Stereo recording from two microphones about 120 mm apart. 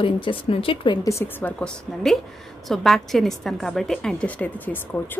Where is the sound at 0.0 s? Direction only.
45° left (ahead or behind).